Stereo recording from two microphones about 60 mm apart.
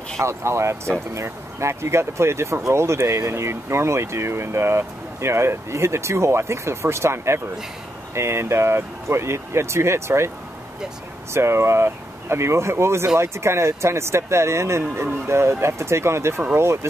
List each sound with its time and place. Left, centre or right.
0.2 s speech: right
11.3 s speech: right